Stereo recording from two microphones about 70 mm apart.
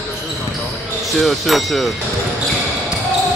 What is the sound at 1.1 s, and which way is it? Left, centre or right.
Speech, centre.